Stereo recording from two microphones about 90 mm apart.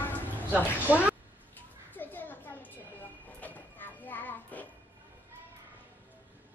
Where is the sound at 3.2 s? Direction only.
15° left (ahead or behind).